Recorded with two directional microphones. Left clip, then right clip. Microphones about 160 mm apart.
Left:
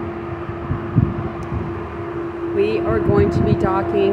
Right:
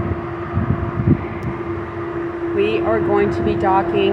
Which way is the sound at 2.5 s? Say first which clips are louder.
Right 1 dB; 20° left (ahead or behind).